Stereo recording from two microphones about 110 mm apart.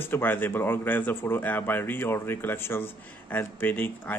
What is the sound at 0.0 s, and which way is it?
A man's voice, 20° left (ahead or behind).